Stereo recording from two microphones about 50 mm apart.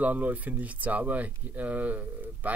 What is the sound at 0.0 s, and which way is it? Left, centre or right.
Speech, right.